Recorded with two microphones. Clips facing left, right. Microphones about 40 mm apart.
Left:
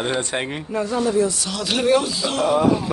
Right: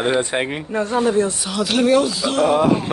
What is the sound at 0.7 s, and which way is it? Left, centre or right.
Speech, right.